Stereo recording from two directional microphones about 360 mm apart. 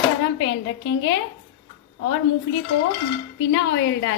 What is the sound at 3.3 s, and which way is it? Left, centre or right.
Speech, left.